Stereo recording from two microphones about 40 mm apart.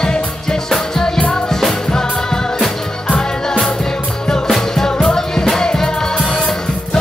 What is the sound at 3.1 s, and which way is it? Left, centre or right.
Music, centre.